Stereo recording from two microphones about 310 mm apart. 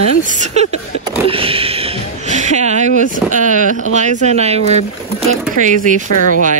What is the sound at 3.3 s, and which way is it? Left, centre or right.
Speech, right.